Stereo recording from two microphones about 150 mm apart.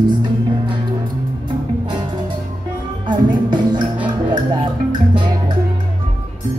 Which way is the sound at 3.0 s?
30° right (ahead or behind).